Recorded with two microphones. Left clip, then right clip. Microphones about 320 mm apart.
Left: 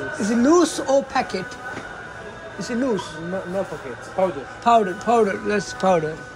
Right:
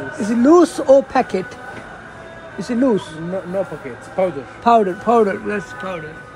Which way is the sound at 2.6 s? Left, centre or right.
Centre.